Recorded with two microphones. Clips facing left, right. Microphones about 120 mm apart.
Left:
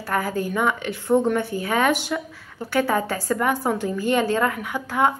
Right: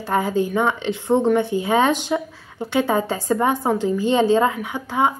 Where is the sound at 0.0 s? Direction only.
20° right (ahead or behind).